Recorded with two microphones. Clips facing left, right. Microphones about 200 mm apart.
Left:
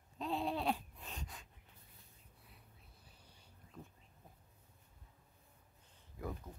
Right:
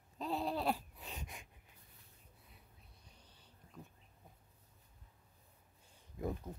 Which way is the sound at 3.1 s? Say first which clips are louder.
Right 2 dB; 10° left (ahead or behind).